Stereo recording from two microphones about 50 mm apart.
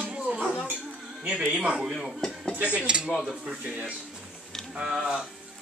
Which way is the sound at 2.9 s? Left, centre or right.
Centre.